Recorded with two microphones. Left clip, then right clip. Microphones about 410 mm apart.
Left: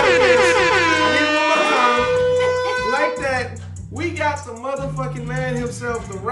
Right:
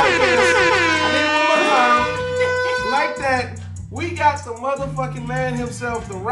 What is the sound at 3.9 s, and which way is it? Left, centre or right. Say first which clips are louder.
Music: right 3 dB; centre.